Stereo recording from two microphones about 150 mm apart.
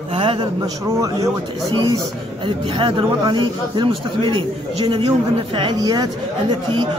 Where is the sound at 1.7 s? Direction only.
35° right (ahead or behind).